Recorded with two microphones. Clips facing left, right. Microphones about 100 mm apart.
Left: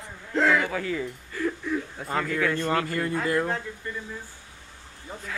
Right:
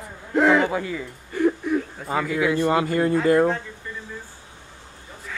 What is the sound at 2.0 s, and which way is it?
Speech, 5° right (ahead or behind).